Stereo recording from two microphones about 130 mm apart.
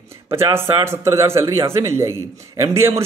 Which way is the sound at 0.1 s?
20° right (ahead or behind).